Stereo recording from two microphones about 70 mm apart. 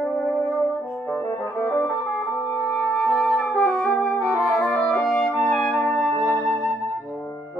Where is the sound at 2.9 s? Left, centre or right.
Centre.